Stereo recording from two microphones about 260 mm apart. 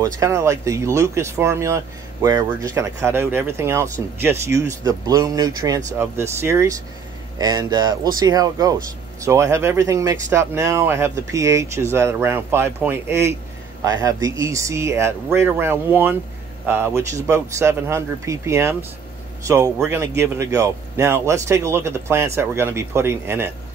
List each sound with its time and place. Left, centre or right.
0.0 s a man's voice: centre
14.4 s a man's voice: centre